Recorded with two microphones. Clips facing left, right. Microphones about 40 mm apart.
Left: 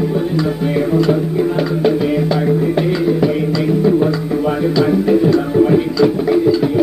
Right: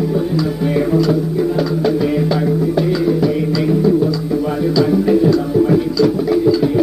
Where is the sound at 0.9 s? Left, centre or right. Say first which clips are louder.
Left 1 dB; left.